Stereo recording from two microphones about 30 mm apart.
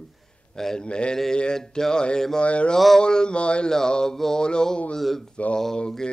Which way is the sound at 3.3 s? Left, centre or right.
Left.